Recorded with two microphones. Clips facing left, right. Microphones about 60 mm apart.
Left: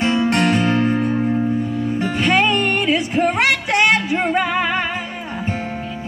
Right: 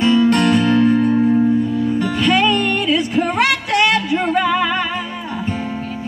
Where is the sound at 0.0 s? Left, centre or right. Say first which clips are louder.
Right 3 dB; left.